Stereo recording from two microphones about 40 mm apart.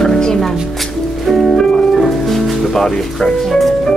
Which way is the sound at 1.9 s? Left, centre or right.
Centre.